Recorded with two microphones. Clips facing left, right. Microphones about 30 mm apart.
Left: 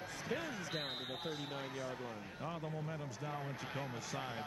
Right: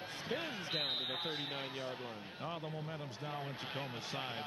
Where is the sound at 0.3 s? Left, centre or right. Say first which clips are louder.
Right 2 dB; right.